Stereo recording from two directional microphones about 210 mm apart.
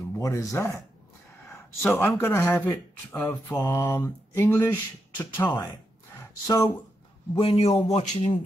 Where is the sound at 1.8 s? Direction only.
5° left (ahead or behind).